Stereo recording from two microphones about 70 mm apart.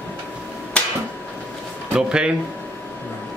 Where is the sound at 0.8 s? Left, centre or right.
Centre.